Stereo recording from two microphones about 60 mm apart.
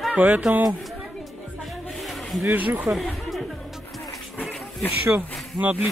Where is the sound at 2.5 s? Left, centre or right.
Right.